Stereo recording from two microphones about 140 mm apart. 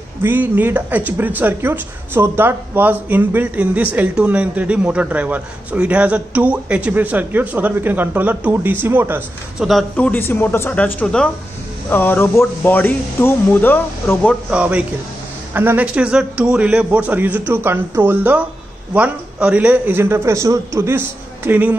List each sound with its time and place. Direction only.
0.2 s speech: 15° right (ahead or behind)
9.7 s speech: 5° left (ahead or behind)
14.5 s speech: 10° right (ahead or behind)